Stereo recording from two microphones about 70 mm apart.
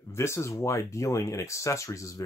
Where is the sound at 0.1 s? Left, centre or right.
Left.